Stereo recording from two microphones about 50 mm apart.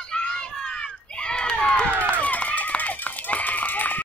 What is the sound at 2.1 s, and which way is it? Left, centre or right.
Run, left.